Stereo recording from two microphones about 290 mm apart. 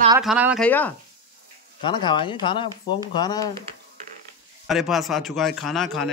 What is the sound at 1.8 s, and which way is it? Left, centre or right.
Speech, centre.